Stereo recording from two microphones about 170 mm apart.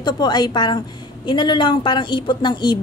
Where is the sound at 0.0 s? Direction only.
25° left (ahead or behind).